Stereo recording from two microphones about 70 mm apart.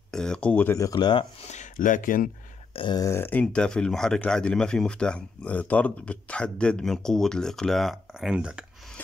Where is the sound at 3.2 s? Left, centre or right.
Left.